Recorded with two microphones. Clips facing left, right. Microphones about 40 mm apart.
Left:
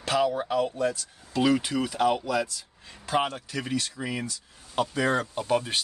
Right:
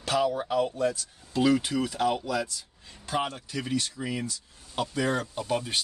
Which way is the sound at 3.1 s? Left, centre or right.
Left.